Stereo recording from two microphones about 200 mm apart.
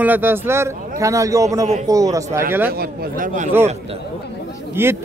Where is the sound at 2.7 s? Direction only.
50° right (ahead or behind).